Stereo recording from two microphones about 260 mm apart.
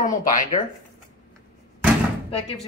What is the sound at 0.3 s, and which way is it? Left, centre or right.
Speech, left.